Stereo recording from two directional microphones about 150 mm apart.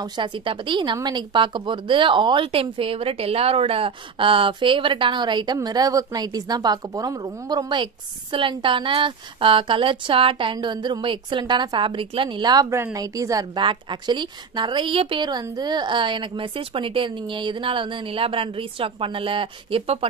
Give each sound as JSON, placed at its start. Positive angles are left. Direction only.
{"t": 0.0, "sound": "speech", "side_deg": -35}